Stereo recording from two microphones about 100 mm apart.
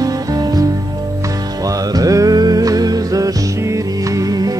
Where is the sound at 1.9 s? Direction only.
35° right (ahead or behind).